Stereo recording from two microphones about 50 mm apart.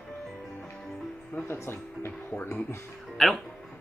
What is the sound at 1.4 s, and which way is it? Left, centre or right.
Speech, left.